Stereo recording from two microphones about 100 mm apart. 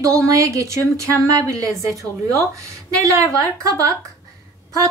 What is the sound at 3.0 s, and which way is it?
Speech, 35° right (ahead or behind).